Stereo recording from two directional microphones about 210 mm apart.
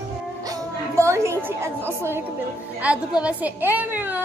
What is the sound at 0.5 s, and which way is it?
A woman's voice, 15° right (ahead or behind).